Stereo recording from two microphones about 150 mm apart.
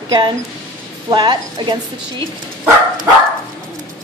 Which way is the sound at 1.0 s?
30° right (ahead or behind).